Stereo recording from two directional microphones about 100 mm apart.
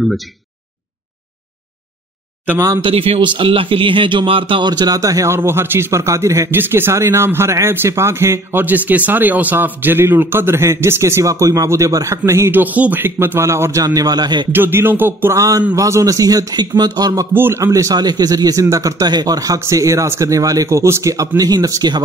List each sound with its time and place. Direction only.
2.8 s a man's voice: 70° right (ahead or behind); by 13.8 s 30° right (ahead or behind)
13.8 s a man's voice: 40° right (ahead or behind)
14.5 s a man's voice: 20° right (ahead or behind); by 17.3 s 35° right (ahead or behind)
17.3 s a man's voice: 20° right (ahead or behind)
17.6 s speech: 35° right (ahead or behind)